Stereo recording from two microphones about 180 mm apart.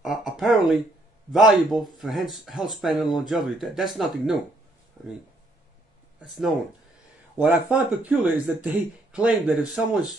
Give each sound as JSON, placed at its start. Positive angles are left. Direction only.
{"t": 0.0, "sound": "speech", "side_deg": -5}
{"t": 6.2, "sound": "speech", "side_deg": 0}